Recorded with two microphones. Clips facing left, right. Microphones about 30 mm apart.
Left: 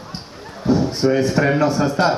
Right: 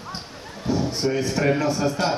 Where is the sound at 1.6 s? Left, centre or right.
Left.